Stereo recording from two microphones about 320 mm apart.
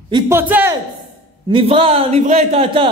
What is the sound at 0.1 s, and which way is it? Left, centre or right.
Speech, centre.